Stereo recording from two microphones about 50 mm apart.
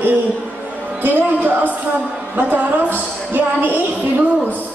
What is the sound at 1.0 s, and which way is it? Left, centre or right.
A man's voice, right.